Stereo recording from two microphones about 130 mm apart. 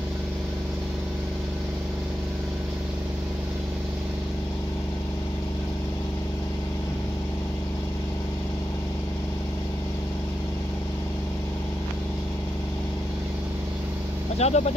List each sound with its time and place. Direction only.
14.4 s speech: 55° left (ahead or behind)